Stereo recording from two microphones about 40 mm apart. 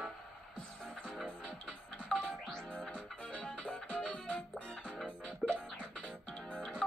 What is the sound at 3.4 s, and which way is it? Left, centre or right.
Music, left.